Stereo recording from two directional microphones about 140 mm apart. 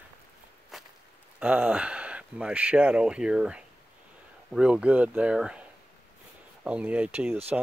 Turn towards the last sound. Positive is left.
turn(degrees=-10)  # may be behind; listen again after turning